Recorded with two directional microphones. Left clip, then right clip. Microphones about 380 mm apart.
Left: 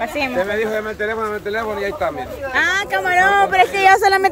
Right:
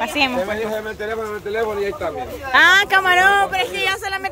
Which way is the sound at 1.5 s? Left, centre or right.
Centre.